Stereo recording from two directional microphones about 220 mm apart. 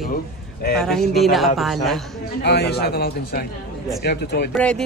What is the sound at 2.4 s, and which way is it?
A man's voice, 50° left (ahead or behind).